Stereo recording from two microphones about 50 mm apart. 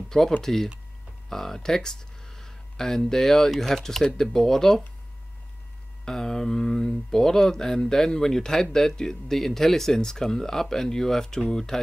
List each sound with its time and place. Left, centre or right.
0.4 s speech: centre
6.0 s speech: centre